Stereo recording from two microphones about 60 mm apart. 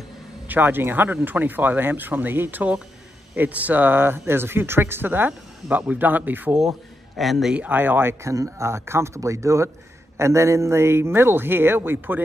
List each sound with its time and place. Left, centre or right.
0.5 s speech: right
7.2 s a man's voice: centre
7.5 s speech: right
8.3 s speech: right